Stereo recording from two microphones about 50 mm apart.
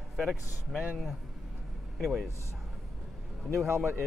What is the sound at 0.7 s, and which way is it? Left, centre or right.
Speech, right.